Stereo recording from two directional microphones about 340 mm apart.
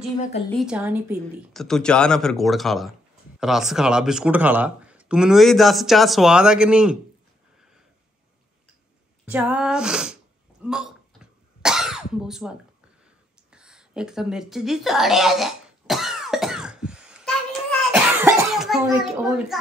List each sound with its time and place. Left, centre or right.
0.5 s speech: centre
9.2 s speech: centre
10.6 s throat clearing: centre
13.5 s a sound: centre